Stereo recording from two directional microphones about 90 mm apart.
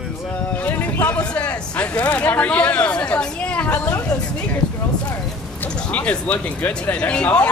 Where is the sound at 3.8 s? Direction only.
40° left (ahead or behind).